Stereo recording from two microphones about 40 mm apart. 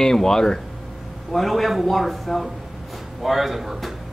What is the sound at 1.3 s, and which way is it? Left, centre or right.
Speech, centre.